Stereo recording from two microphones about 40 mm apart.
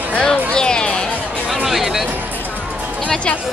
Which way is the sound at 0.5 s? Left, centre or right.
Left.